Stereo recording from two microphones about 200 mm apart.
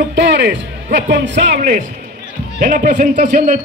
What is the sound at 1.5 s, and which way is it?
A man's voice, 45° right (ahead or behind).